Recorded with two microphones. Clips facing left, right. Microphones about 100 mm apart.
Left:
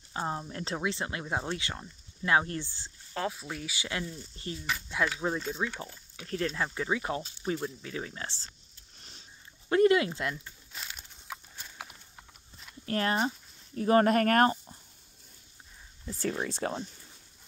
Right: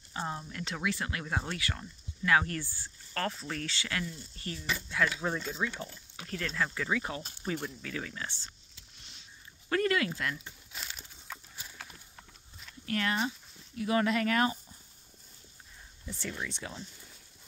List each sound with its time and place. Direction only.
0.1 s speech: 30° left (ahead or behind)
3.3 s speech: 10° left (ahead or behind)
6.3 s speech: 30° left (ahead or behind)
9.7 s speech: 20° left (ahead or behind)
10.7 s a sound: centre (ahead or behind)
11.8 s horse: 10° left (ahead or behind)
12.8 s speech: 35° left (ahead or behind)
16.2 s speech: 45° left (ahead or behind)